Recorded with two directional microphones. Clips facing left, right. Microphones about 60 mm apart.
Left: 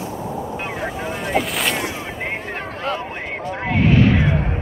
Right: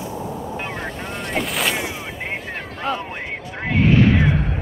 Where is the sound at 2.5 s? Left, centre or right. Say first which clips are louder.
Left 3 dB; left.